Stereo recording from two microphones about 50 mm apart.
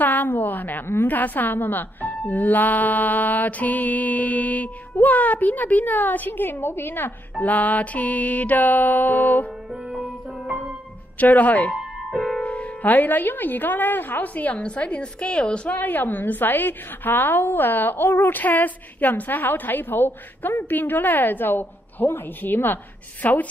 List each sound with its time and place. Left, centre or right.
0.0 s a woman's voice: left
7.3 s a woman's voice: left
9.8 s music: centre
11.1 s a woman's voice: left
11.7 s music: centre
12.4 s a woman's voice: left
15.8 s a woman's voice: left